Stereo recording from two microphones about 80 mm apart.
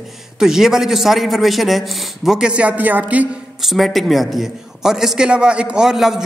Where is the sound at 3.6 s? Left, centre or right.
Centre.